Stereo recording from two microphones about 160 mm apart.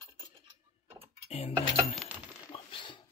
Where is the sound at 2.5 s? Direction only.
35° left (ahead or behind).